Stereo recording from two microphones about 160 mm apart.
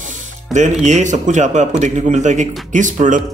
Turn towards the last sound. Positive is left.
turn(degrees=-50)  # may be behind; listen again after turning